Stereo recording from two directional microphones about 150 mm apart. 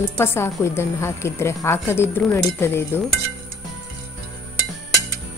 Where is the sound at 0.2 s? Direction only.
15° left (ahead or behind).